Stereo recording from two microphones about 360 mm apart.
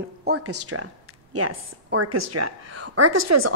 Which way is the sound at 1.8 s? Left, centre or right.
Right.